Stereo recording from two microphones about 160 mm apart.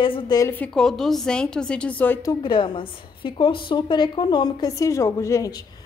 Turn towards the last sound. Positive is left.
turn(degrees=20)  # may be behind; listen again after turning